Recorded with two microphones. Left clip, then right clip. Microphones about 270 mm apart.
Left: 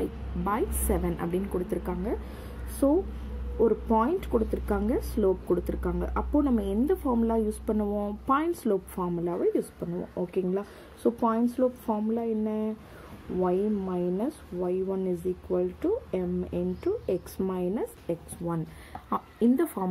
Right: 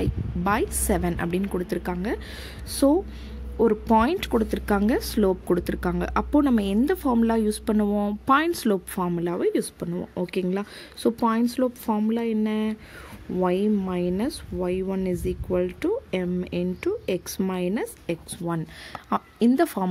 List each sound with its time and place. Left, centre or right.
0.4 s speech: right